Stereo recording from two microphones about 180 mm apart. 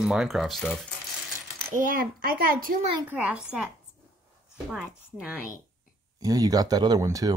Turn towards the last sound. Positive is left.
turn(degrees=-20)  # may be behind; listen again after turning